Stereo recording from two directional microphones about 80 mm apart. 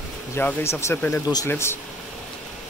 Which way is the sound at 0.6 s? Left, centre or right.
Left.